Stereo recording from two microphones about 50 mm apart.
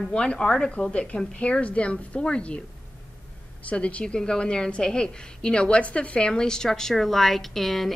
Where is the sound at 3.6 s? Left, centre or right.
Left; by 7.9 s centre.